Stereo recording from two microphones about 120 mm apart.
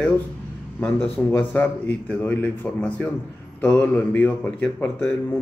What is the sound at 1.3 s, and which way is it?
A man's voice, 15° left (ahead or behind).